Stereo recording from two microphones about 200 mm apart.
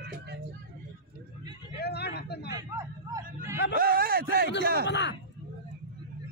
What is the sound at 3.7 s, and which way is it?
A man's voice, 50° right (ahead or behind).